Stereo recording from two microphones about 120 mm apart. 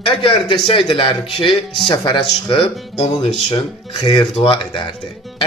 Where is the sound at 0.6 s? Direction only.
50° left (ahead or behind).